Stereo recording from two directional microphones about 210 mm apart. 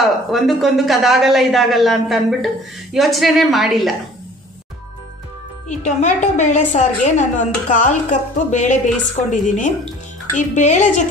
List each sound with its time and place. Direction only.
0.0 s a man's voice: centre (ahead or behind)
5.7 s a woman's voice: 35° left (ahead or behind)